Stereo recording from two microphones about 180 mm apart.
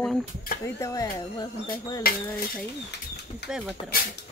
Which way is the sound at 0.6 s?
15° left (ahead or behind).